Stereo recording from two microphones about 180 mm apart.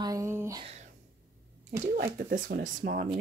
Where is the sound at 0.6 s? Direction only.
35° right (ahead or behind).